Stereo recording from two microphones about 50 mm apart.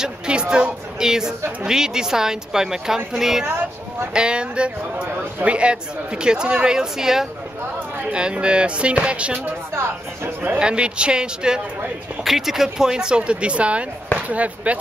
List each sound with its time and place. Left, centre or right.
0.0 s a woman's voice: centre
3.4 s a sound: right
4.1 s speech: centre
9.8 s speech: right
10.6 s speech: centre
12.3 s speech: centre; by 14.8 s right